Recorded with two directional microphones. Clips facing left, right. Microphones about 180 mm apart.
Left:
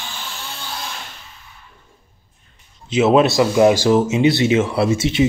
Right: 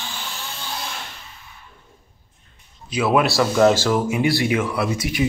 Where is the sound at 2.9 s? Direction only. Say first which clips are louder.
Left 5 dB; 25° left (ahead or behind).